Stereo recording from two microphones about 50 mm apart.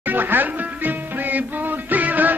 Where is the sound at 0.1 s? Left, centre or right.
Right.